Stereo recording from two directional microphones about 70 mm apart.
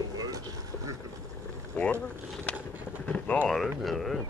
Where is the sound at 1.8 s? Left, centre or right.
Left.